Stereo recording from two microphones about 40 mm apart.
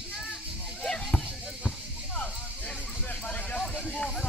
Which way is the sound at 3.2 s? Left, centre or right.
Left.